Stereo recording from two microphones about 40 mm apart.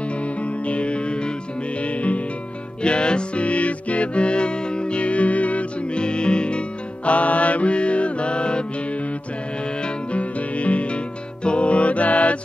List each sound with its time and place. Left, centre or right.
0.2 s music: left
7.1 s music: left
9.8 s music: left